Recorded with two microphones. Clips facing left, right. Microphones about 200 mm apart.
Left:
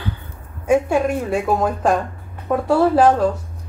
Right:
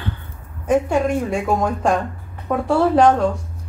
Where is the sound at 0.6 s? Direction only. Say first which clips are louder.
Left 1 dB; 10° left (ahead or behind).